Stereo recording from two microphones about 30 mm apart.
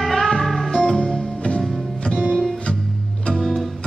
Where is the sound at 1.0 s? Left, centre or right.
Left.